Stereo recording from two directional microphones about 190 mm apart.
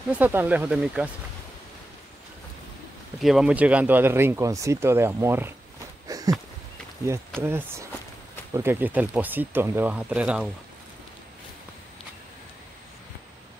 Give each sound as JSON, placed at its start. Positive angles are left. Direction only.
{"t": 0.1, "sound": "speech", "side_deg": -10}
{"t": 3.2, "sound": "speech", "side_deg": 0}
{"t": 6.0, "sound": "a sound", "side_deg": -20}
{"t": 7.4, "sound": "speech", "side_deg": -10}